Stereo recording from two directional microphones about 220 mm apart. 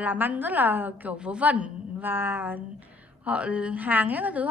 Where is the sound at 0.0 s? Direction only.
10° right (ahead or behind).